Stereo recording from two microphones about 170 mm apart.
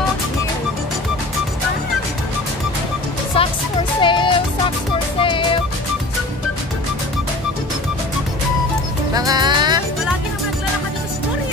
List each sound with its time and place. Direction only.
3.4 s music: 35° left (ahead or behind)
9.1 s music: 20° right (ahead or behind)